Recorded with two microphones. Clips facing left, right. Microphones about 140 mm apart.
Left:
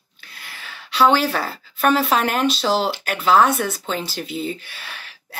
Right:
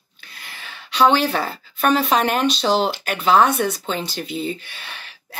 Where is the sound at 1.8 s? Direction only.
5° left (ahead or behind).